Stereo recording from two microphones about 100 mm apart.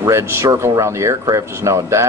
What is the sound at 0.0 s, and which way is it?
Speech, 30° right (ahead or behind).